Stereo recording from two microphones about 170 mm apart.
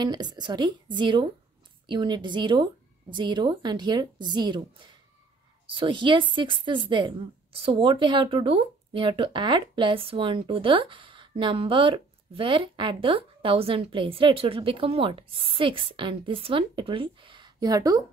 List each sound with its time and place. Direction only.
0.0 s a woman's voice: 25° right (ahead or behind)